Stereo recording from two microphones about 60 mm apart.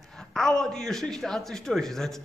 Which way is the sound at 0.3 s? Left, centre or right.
Centre.